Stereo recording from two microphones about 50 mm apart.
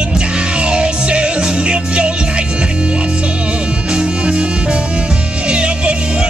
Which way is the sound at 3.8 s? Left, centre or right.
Centre.